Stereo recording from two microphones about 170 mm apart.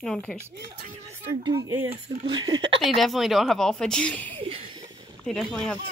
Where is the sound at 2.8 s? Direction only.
Centre (ahead or behind).